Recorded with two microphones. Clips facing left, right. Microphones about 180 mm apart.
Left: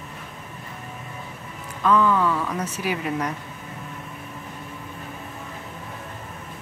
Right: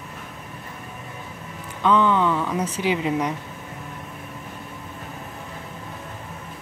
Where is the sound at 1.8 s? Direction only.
20° right (ahead or behind).